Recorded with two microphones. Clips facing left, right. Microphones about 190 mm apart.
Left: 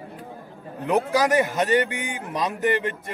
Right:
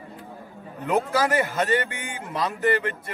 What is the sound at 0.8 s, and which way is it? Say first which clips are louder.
Speech: left 2 dB; 15° left (ahead or behind).